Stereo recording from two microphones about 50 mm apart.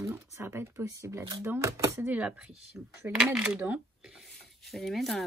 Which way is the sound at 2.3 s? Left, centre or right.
Centre.